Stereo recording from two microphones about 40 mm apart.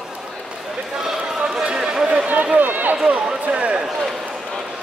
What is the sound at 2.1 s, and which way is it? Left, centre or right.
Run, right.